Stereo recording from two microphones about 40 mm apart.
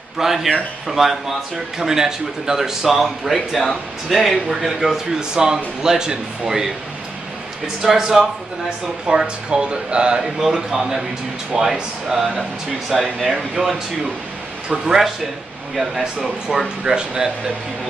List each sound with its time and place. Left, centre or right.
0.2 s speech: centre
5.3 s speech: centre
15.8 s speech: centre